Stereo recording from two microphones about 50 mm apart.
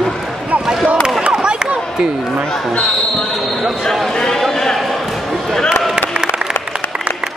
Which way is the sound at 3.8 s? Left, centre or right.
Centre.